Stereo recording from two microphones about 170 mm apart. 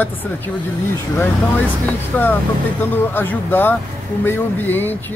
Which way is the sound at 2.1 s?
10° left (ahead or behind).